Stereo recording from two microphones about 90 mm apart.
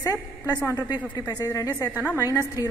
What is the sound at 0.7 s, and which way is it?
A woman's voice, 45° left (ahead or behind).